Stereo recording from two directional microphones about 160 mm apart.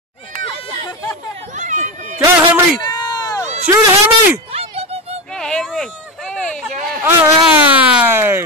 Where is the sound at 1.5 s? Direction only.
50° right (ahead or behind).